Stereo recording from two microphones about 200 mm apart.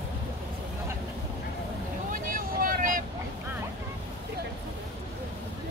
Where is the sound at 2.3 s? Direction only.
45° right (ahead or behind).